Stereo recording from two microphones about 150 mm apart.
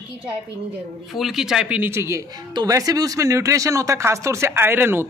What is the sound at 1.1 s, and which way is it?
Speech, centre (ahead or behind).